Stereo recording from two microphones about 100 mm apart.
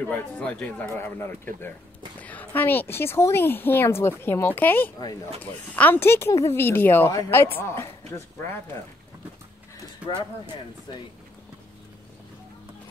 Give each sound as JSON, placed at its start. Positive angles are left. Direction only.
{"t": 0.1, "sound": "speech", "side_deg": 10}
{"t": 10.0, "sound": "speech", "side_deg": -10}
{"t": 10.9, "sound": "speech", "side_deg": 45}